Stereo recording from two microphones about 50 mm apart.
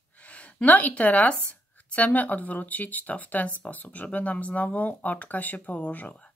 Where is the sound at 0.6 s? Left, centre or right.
Left.